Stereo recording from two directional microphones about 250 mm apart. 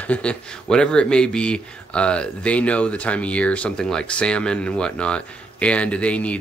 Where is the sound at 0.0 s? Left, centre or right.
Centre.